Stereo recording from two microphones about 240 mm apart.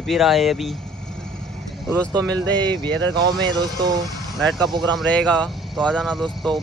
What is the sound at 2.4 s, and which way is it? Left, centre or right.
Speech, centre.